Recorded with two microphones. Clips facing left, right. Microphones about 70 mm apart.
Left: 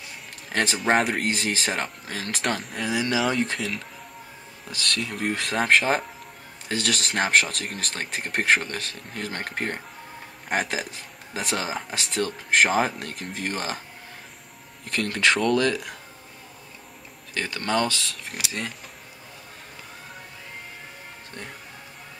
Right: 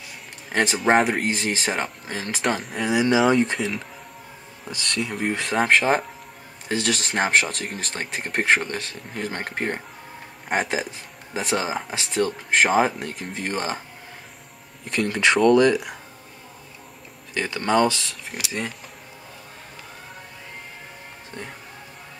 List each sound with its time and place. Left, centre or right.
0.5 s speech: centre
2.9 s speech: centre
3.3 s speech: centre
4.9 s speech: centre
11.3 s speech: centre
14.9 s speech: centre
17.3 s speech: centre
18.0 s speech: centre